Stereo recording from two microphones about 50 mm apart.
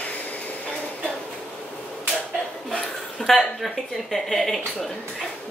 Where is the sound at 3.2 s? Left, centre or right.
Centre.